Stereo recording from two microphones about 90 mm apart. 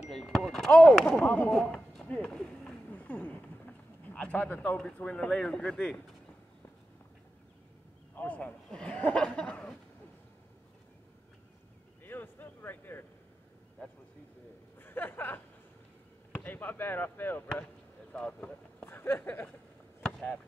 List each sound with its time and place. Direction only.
0.1 s speech: centre (ahead or behind)
8.2 s speech: 20° left (ahead or behind)
12.0 s a sound: 20° left (ahead or behind)
14.8 s a sound: 25° left (ahead or behind)
16.3 s chop: 20° left (ahead or behind)
18.1 s speech: 10° left (ahead or behind)
18.9 s speech: 25° left (ahead or behind)
20.0 s chop: 5° left (ahead or behind)